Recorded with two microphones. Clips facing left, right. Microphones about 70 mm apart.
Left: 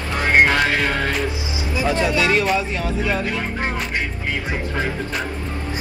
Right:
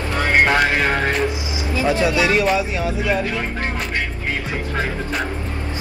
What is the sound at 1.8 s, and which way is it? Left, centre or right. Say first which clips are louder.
Speech: right 1 dB; centre.